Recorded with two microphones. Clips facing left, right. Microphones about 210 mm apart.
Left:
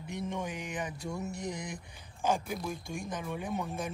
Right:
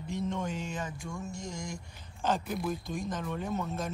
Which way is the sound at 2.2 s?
10° left (ahead or behind).